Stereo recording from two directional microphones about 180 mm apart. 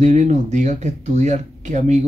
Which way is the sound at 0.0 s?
40° right (ahead or behind).